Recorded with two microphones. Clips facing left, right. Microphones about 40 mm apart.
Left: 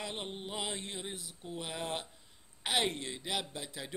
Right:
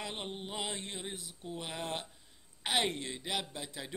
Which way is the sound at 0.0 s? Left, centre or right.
Centre.